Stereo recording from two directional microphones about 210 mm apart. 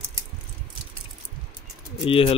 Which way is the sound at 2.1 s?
25° left (ahead or behind).